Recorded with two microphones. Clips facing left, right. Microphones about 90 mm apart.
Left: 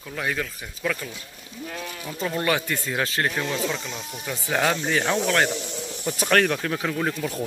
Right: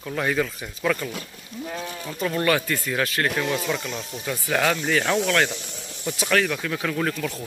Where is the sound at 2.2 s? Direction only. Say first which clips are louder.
Right 2 dB; 20° left (ahead or behind).